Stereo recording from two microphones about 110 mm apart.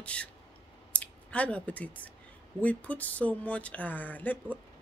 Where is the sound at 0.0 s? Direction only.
10° left (ahead or behind).